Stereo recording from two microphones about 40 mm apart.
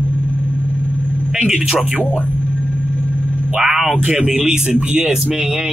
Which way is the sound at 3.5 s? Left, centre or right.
Centre.